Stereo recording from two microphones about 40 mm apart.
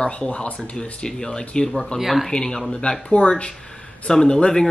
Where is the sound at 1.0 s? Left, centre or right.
Centre.